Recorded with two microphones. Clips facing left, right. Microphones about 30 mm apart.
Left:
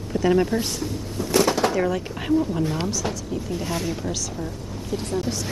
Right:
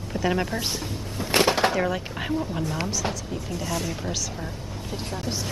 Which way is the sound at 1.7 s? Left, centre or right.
Centre.